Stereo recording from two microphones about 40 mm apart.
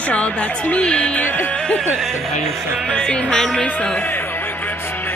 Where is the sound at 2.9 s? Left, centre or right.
Left.